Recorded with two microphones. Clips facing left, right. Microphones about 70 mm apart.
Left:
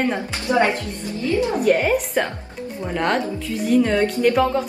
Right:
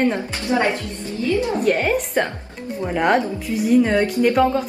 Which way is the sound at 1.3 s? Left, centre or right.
Left.